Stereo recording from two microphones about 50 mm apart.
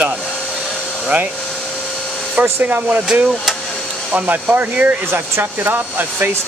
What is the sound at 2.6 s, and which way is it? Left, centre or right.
Speech, right.